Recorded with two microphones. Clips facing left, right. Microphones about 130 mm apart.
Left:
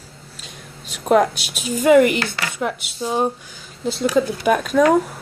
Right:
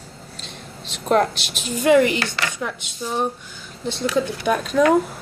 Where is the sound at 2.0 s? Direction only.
55° left (ahead or behind).